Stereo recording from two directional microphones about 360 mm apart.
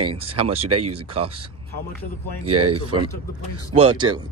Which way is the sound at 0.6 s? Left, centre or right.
Right.